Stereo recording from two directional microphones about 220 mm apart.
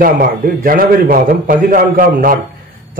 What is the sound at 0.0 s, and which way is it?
Speech, 40° right (ahead or behind).